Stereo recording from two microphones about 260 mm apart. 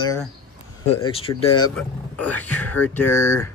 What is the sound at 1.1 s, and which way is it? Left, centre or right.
Speech, left.